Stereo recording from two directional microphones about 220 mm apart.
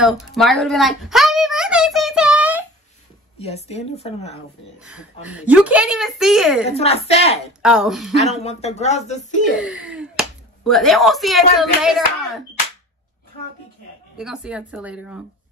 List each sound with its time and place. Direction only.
0.0 s a sound: centre (ahead or behind)
3.3 s speech: 30° left (ahead or behind)
4.7 s a woman's voice: 5° right (ahead or behind)
6.7 s speech: 30° left (ahead or behind)
7.6 s a woman's voice: centre (ahead or behind)
8.2 s speech: 30° left (ahead or behind)
9.6 s a woman's voice: 5° right (ahead or behind)
14.1 s a woman's voice: 5° right (ahead or behind)